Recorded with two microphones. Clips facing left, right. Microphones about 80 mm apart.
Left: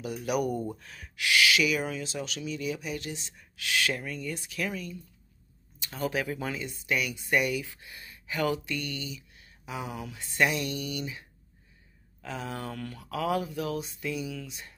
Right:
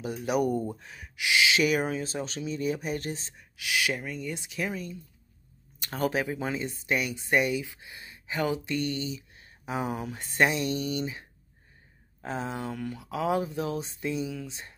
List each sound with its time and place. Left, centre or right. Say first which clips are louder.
0.0 s speech: right 2 dB; right
0.7 s speech: right 1 dB; centre
1.6 s speech: right 3 dB; right
3.3 s speech: left 2 dB; centre; by 4.9 s right
5.8 s speech: right 4 dB; right
6.1 s speech: right 2 dB; right